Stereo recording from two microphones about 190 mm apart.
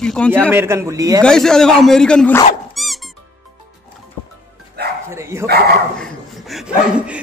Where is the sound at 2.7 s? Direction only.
Centre (ahead or behind).